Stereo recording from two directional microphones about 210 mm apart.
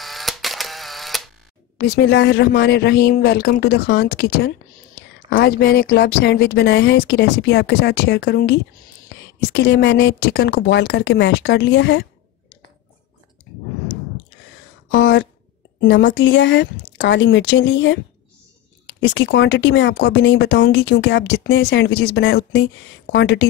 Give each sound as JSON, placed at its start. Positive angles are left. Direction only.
{"t": 0.0, "sound": "camera", "side_deg": 0}
{"t": 1.9, "sound": "speech", "side_deg": 55}
{"t": 14.9, "sound": "speech", "side_deg": 65}